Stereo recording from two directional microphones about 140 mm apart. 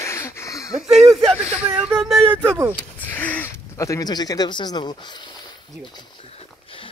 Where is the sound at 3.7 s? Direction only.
20° left (ahead or behind).